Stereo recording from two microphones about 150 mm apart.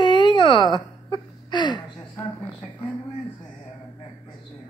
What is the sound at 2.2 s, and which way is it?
Speech, 10° left (ahead or behind).